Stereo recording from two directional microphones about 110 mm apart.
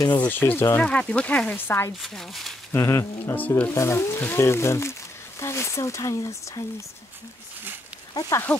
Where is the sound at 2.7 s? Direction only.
25° left (ahead or behind).